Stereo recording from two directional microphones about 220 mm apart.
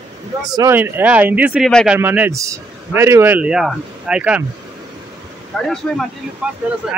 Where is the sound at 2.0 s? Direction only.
10° right (ahead or behind).